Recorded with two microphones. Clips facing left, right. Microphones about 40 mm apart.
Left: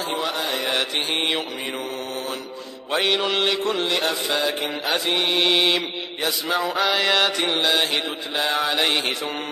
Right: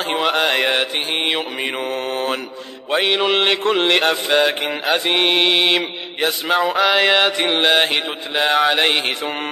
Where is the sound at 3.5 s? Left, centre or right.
Right.